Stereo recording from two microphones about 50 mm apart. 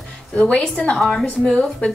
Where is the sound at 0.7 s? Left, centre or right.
Left.